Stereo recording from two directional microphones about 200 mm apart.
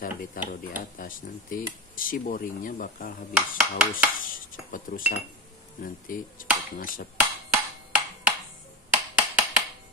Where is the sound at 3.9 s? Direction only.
45° left (ahead or behind).